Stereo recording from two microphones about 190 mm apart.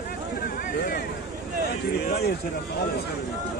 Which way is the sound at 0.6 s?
50° left (ahead or behind).